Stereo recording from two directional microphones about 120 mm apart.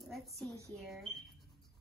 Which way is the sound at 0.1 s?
Centre (ahead or behind).